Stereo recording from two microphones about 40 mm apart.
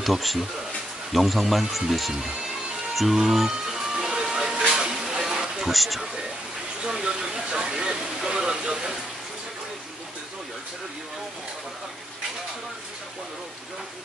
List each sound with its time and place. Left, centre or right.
0.0 s speech: centre
2.9 s music: centre
5.7 s speech: centre
7.0 s a sound: centre